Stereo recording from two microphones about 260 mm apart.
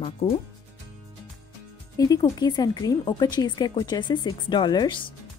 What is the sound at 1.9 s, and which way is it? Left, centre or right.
Speech, centre.